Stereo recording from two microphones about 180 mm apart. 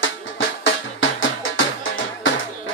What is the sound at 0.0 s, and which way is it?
Music, 85° left.